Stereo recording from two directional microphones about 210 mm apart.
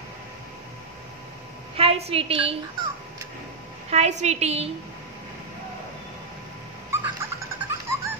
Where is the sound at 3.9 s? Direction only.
30° right (ahead or behind).